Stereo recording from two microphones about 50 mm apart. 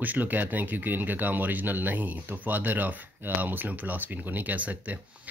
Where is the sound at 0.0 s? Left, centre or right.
Right.